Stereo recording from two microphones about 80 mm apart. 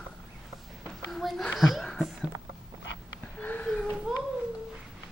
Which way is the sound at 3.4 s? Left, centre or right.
Left.